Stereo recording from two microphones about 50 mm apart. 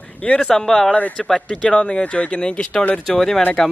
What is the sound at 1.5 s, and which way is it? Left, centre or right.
Speech, left.